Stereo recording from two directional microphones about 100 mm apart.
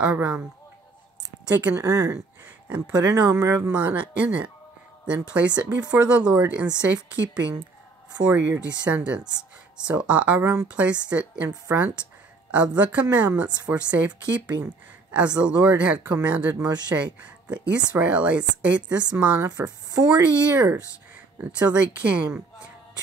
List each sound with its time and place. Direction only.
0.0 s speech: 15° right (ahead or behind)
1.6 s speech: 30° right (ahead or behind)
2.4 s a sound: 15° right (ahead or behind)
3.3 s speech: 30° right (ahead or behind)
3.5 s speech: 15° right (ahead or behind)
10.7 s a woman's voice: 10° right (ahead or behind)
21.5 s speech: 15° right (ahead or behind)